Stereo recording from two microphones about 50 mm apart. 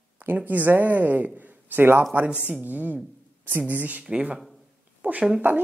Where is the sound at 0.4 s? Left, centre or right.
Right.